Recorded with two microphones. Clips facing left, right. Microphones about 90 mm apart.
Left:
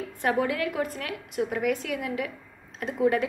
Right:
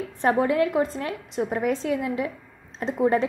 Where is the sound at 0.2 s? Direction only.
30° right (ahead or behind).